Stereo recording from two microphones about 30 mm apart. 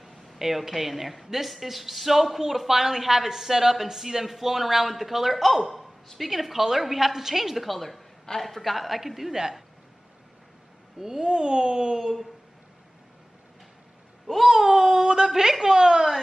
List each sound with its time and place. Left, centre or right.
0.0 s a woman's voice: centre
7.7 s a man's voice: centre
9.3 s a man's voice: centre
11.0 s speech: right
14.2 s a man's voice: centre
14.8 s speech: right